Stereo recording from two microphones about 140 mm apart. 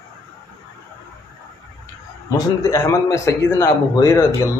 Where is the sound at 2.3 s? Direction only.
20° left (ahead or behind).